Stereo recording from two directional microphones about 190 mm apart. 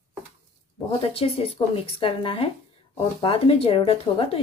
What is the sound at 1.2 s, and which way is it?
Speech, 30° left (ahead or behind).